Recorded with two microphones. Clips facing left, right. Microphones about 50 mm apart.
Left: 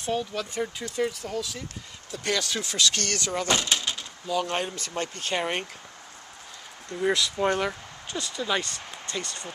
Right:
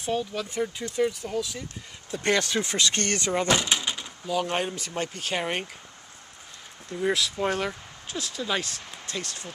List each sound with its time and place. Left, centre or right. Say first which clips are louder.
0.0 s speech: even; centre
2.0 s speech: right 4 dB; right
3.4 s speech: right 1 dB; centre
7.0 s speech: left 1 dB; centre